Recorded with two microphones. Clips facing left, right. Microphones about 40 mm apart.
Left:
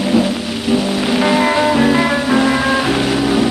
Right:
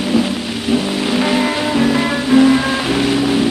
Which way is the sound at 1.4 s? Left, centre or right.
Centre.